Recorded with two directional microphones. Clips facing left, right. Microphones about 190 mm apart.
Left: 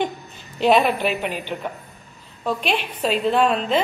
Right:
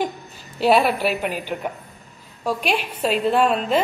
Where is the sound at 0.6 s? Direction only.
5° right (ahead or behind).